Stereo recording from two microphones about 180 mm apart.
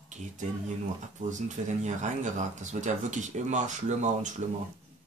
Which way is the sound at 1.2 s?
45° right (ahead or behind).